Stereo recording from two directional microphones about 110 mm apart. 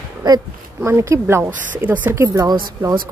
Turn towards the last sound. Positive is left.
turn(degrees=-35)  # may be behind; listen again after turning